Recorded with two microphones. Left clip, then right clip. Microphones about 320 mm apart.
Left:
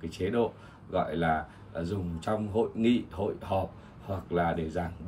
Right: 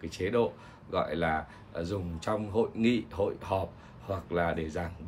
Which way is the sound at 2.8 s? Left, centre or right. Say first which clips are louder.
Even; right.